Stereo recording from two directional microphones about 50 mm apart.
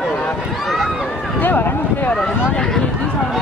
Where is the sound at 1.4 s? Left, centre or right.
Left.